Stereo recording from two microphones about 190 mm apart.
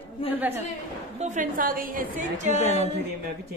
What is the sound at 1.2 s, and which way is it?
A woman's voice, 40° right (ahead or behind).